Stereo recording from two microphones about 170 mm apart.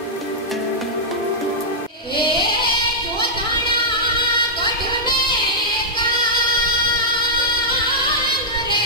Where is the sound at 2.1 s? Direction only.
30° left (ahead or behind).